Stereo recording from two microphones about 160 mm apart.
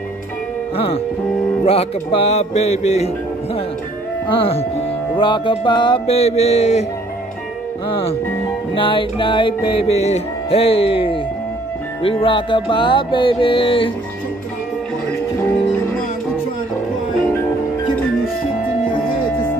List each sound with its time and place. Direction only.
0.7 s music: 35° left (ahead or behind)
4.3 s music: 35° left (ahead or behind)
8.7 s music: 30° left (ahead or behind)